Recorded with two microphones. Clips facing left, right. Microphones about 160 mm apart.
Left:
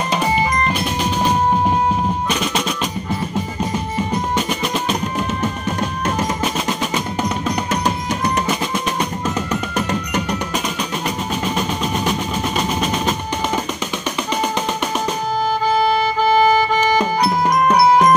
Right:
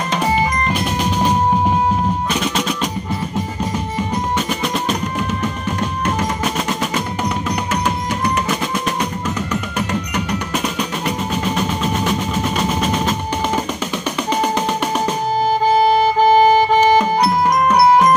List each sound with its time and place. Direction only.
7.7 s music: 35° left (ahead or behind)
16.0 s music: 35° right (ahead or behind)